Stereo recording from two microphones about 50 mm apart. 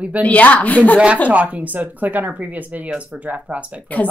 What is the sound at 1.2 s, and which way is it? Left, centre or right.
Speech, right.